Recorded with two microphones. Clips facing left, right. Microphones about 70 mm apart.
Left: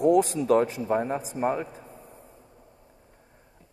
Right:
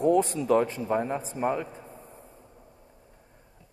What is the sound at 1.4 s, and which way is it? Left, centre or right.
Speech, left.